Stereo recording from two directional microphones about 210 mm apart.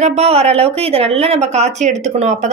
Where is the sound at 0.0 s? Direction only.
30° right (ahead or behind).